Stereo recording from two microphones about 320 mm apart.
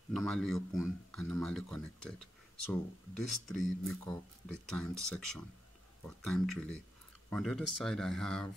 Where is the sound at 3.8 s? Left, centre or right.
Centre.